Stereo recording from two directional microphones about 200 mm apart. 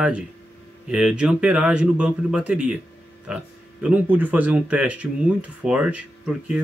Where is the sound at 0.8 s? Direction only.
5° right (ahead or behind).